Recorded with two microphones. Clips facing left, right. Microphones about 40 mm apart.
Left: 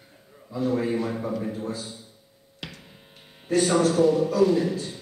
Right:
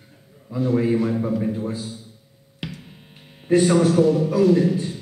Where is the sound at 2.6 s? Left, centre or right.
Centre.